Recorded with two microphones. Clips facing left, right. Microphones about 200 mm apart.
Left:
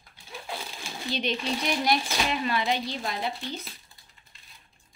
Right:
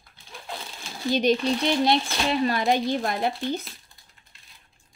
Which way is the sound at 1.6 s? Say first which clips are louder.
Right 3 dB; 30° right (ahead or behind).